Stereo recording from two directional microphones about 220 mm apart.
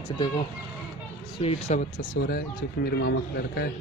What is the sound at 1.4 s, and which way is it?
Speech, 25° left (ahead or behind).